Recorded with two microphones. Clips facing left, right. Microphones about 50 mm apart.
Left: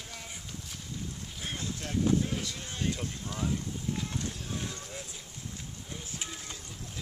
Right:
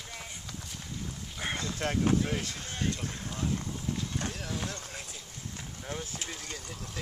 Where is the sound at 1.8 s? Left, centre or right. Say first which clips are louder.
Even; right.